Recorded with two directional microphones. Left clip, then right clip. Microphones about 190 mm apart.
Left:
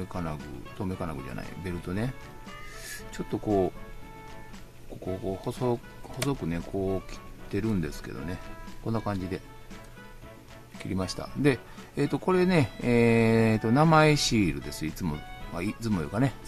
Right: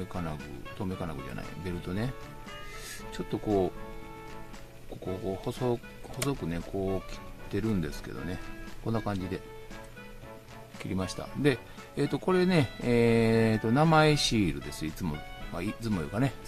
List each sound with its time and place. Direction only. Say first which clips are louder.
0.1 s speech: left 2 dB; 15° left (ahead or behind)
2.9 s music: left 2 dB; 15° left (ahead or behind)
5.2 s speech: left 1 dB; 10° left (ahead or behind)
10.8 s speech: left 2 dB; 10° left (ahead or behind)